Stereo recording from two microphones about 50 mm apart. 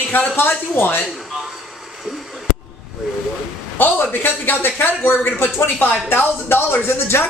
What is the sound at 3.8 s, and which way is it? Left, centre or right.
Speech, left.